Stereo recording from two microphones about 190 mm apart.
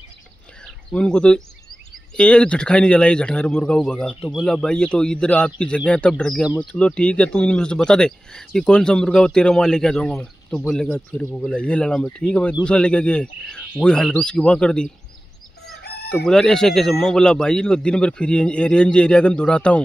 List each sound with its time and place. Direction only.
0.9 s speech: 5° left (ahead or behind)
15.8 s chicken: 55° left (ahead or behind)
16.3 s speech: 5° left (ahead or behind)